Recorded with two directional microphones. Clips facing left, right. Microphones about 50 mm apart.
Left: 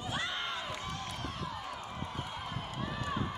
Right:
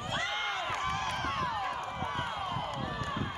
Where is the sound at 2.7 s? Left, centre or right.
Centre.